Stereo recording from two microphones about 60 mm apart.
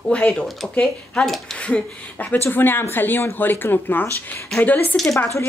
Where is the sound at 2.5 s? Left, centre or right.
Left.